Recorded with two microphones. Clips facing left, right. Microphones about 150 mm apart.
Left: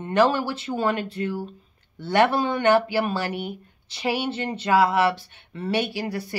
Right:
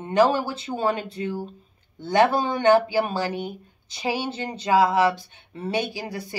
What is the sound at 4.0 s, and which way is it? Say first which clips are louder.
A woman's voice: left 1 dB; 15° right (ahead or behind).